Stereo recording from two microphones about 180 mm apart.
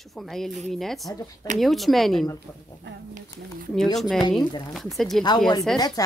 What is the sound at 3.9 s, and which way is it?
Speech, centre (ahead or behind).